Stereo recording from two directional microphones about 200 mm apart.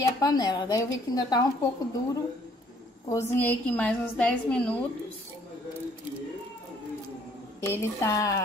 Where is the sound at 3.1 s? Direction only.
15° left (ahead or behind).